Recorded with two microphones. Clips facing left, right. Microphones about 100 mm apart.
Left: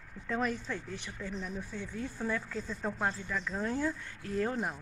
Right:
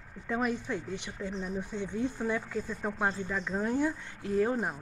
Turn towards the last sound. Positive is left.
turn(degrees=-20)  # may be behind; listen again after turning